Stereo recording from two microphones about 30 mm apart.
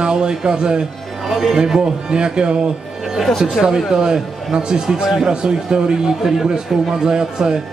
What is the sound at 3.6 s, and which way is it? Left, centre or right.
Speech, right.